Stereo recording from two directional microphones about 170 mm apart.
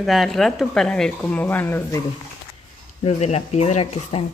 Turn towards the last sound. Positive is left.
turn(degrees=35)  # may be behind; listen again after turning